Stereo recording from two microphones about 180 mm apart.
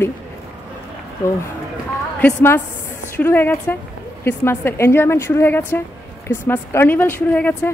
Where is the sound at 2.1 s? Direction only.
10° left (ahead or behind).